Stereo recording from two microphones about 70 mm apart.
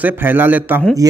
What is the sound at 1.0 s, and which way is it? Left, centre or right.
Speech, right.